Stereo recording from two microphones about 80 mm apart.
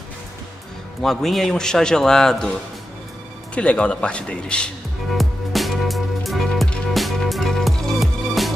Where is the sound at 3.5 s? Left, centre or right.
Centre.